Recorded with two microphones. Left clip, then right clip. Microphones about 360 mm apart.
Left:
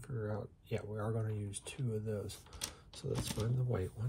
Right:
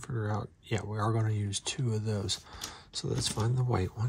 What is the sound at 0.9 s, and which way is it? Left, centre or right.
Speech, right.